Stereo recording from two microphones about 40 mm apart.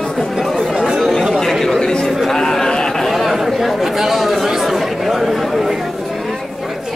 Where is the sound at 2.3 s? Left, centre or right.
Centre.